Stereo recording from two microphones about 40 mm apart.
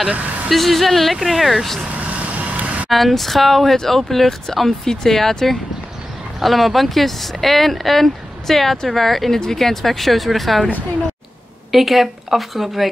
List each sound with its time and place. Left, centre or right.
0.5 s speech: centre
2.0 s vehicle: right
2.9 s speech: centre
11.7 s speech: centre